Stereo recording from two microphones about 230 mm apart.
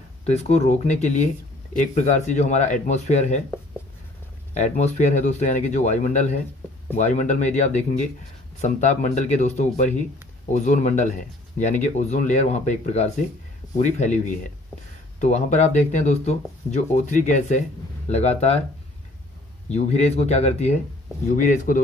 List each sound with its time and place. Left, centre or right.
0.2 s speech: left
4.6 s speech: left
19.7 s speech: left